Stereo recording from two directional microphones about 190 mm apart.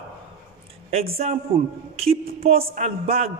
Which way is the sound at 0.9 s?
35° right (ahead or behind).